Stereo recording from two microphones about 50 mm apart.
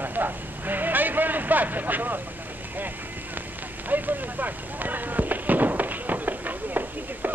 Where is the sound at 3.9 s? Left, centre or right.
Right.